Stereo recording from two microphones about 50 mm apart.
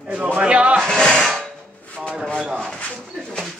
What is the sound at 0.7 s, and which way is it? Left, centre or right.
Music, centre.